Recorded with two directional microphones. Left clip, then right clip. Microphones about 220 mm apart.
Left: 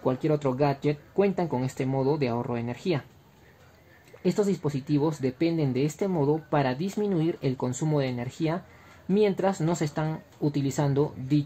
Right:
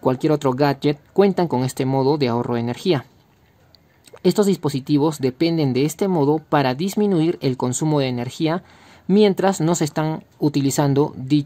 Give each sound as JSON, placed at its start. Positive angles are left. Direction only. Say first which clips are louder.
{"t": 0.0, "sound": "speech", "louder": "right 7 dB", "side_deg": -35}
{"t": 4.2, "sound": "speech", "louder": "right 8 dB", "side_deg": -30}